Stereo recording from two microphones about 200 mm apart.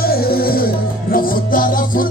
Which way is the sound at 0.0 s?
50° left (ahead or behind).